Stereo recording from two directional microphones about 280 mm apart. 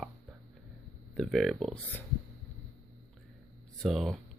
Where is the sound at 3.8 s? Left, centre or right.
Centre.